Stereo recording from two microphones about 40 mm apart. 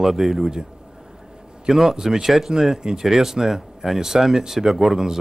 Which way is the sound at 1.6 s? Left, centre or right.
Centre.